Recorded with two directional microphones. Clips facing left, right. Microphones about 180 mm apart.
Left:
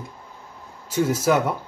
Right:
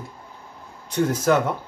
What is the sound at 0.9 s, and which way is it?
Speech, 5° left (ahead or behind).